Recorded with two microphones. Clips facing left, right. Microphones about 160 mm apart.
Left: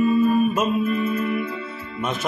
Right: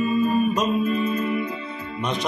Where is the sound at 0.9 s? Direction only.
15° right (ahead or behind).